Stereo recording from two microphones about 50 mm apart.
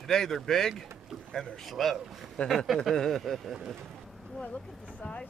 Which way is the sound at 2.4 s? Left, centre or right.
Left.